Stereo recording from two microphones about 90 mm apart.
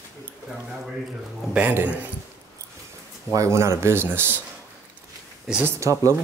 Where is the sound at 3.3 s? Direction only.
35° right (ahead or behind).